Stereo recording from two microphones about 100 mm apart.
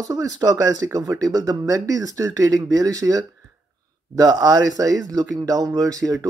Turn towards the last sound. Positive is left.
turn(degrees=-35)  # may be behind; listen again after turning